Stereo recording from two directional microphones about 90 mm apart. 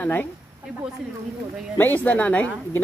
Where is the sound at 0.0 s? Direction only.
20° left (ahead or behind).